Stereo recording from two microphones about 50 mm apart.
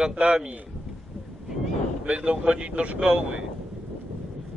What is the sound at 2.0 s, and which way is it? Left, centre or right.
Speech, right.